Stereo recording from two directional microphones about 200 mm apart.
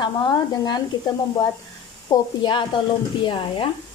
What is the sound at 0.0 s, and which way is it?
A woman's voice, 20° left (ahead or behind).